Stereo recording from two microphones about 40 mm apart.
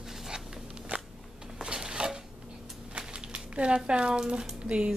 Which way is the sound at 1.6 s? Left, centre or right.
Centre.